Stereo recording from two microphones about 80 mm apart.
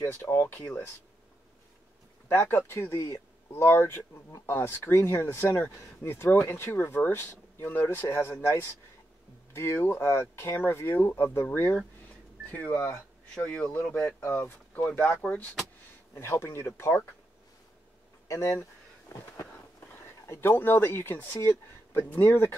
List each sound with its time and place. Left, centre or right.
0.0 s speech: left
0.6 s speech: centre
2.2 s speech: left
16.2 s speech: left
18.3 s speech: left
20.2 s speech: left